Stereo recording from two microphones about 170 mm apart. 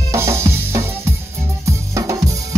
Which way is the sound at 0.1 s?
15° right (ahead or behind).